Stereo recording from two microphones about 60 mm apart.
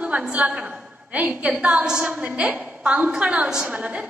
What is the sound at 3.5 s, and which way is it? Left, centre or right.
Speech, centre.